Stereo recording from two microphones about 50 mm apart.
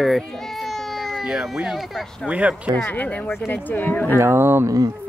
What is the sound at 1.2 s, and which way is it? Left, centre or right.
Speech, centre.